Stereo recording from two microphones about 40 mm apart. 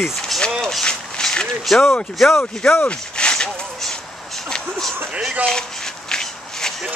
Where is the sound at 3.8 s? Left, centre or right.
Centre.